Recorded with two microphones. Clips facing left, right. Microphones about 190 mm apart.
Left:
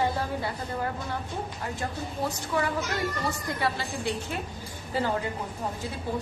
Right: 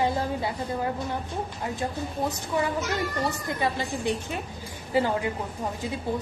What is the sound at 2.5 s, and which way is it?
A child's voice, 20° right (ahead or behind).